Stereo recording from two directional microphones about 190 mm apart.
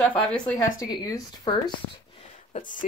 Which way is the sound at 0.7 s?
20° left (ahead or behind).